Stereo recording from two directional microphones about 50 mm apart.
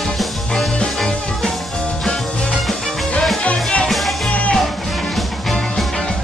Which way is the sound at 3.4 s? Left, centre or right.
Left.